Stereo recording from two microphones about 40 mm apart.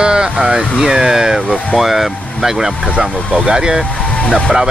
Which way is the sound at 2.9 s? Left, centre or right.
Centre.